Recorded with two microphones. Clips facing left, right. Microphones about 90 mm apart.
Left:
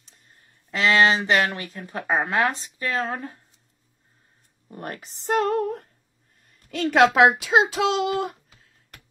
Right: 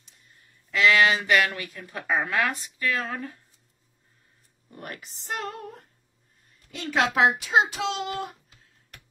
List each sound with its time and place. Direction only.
0.7 s speech: 30° left (ahead or behind)
4.6 s speech: 30° left (ahead or behind); by 5.6 s 50° left (ahead or behind)
5.6 s a sound: 70° left (ahead or behind)
6.7 s a child's voice: 60° left (ahead or behind); by 8.3 s 90° left